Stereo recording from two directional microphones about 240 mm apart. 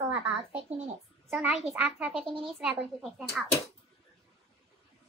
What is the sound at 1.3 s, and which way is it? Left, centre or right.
A woman's voice, centre.